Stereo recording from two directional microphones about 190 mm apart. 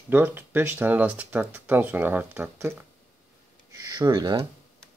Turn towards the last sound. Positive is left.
turn(degrees=-20)  # may be behind; listen again after turning